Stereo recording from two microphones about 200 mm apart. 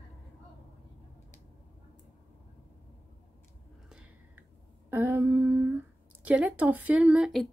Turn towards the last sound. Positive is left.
turn(degrees=0)  # may be behind; listen again after turning